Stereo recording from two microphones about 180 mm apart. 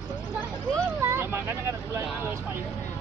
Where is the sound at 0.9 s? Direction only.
15° right (ahead or behind).